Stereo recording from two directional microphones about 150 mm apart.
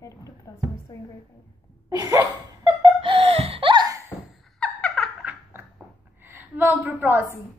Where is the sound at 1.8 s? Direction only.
20° right (ahead or behind).